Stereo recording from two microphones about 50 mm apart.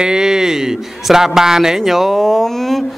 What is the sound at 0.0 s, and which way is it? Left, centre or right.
A man's voice, centre.